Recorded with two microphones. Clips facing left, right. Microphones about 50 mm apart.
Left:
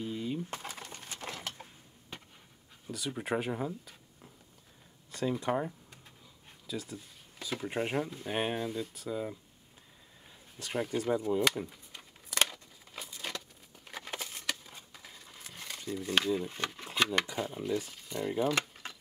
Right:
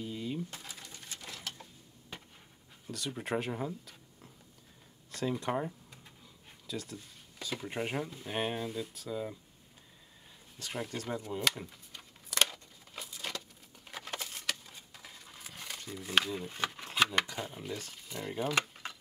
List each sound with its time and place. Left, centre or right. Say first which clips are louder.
0.0 s typewriter: left 2 dB; centre
0.5 s a sound: left 6 dB; left
2.9 s speech: left 1 dB; centre
10.6 s a sound: left 5 dB; centre
17.0 s speech: even; centre
17.9 s keys jangling: left 5 dB; centre